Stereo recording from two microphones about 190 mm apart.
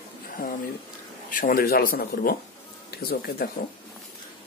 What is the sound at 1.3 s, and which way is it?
Speech, 50° left (ahead or behind).